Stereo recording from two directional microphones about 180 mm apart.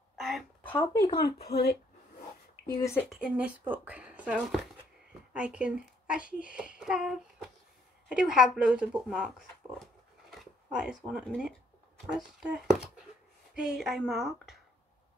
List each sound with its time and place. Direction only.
0.2 s a sound: centre (ahead or behind)
1.1 s speech: 60° left (ahead or behind)
2.8 s speech: 15° left (ahead or behind)
3.1 s speech: 5° right (ahead or behind)